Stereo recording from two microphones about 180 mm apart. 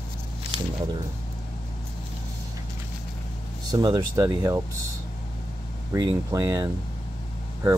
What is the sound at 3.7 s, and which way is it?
Speech, 20° right (ahead or behind).